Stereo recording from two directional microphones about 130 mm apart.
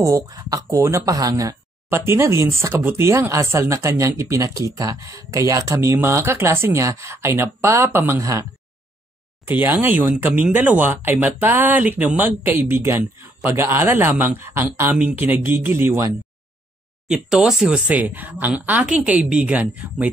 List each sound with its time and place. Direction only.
0.0 s speech: 25° right (ahead or behind)
9.5 s speech: 15° right (ahead or behind)
17.1 s speech: 5° right (ahead or behind)